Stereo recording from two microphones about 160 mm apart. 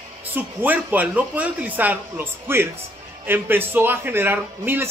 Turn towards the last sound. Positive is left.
turn(degrees=-15)  # may be behind; listen again after turning